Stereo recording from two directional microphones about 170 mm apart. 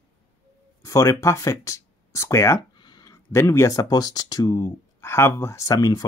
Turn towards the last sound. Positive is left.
turn(degrees=20)  # may be behind; listen again after turning